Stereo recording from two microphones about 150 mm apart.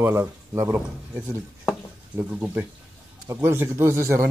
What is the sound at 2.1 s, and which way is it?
A man's voice, 10° right (ahead or behind).